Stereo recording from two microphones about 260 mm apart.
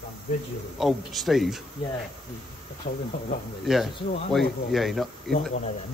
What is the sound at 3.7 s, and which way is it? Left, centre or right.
Speech, centre.